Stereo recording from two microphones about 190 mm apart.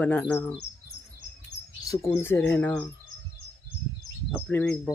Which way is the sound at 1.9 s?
15° left (ahead or behind).